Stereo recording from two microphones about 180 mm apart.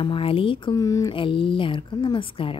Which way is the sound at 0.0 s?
30° left (ahead or behind).